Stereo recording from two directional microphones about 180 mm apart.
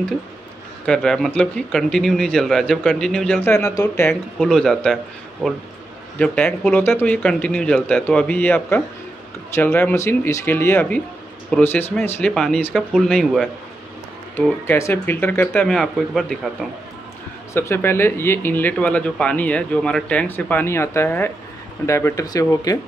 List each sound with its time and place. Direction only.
0.8 s speech: 5° left (ahead or behind)
4.4 s speech: 5° left (ahead or behind)
14.3 s speech: 15° left (ahead or behind)
17.6 s speech: 15° left (ahead or behind)